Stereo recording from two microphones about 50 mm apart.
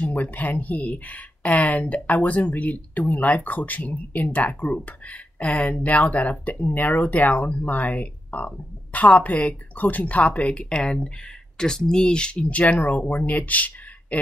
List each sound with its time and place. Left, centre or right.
0.0 s speech: left